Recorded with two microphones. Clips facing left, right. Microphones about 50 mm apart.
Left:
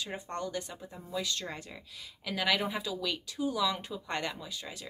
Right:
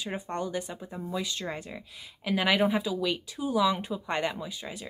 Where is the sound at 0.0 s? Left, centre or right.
Centre.